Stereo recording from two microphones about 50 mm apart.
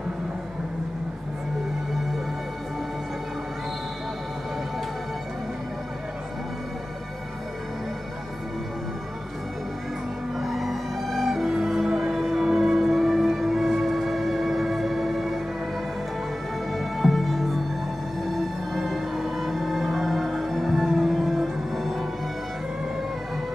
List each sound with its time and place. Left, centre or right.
10.3 s music: centre
16.7 s music: centre